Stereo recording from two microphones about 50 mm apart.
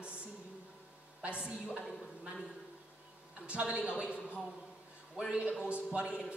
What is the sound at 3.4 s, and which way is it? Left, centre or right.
Speech, right.